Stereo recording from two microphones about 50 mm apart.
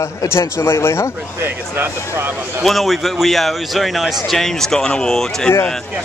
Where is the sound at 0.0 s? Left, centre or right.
Left.